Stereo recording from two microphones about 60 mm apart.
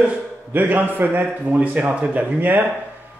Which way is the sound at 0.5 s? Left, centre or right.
Right.